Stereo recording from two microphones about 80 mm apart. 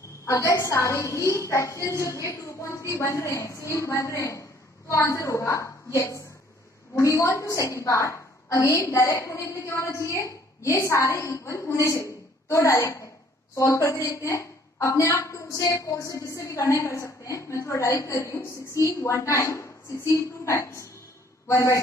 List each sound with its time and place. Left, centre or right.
0.2 s a woman's voice: left